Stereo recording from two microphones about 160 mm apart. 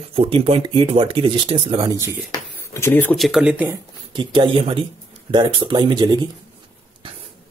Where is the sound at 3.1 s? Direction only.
Centre (ahead or behind).